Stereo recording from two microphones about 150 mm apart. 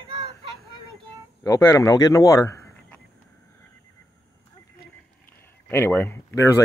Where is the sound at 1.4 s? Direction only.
20° left (ahead or behind).